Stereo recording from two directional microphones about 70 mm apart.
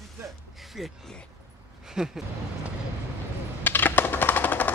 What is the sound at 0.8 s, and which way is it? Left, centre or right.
Speech, centre.